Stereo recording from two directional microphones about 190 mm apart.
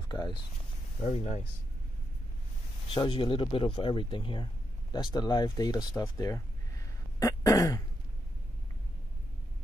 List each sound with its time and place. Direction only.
0.1 s speech: 20° left (ahead or behind)
1.0 s speech: 30° left (ahead or behind)
2.9 s speech: 25° left (ahead or behind)